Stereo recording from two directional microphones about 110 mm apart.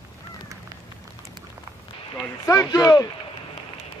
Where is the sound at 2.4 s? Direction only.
30° left (ahead or behind).